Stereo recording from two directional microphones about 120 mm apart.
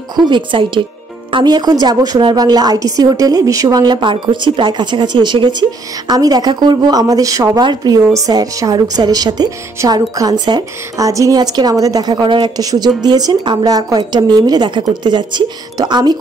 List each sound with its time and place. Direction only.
0.3 s a woman's voice: 45° right (ahead or behind)